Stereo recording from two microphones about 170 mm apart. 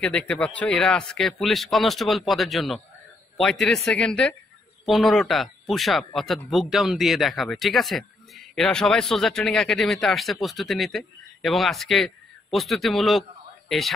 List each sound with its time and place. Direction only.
0.0 s speech: 10° left (ahead or behind)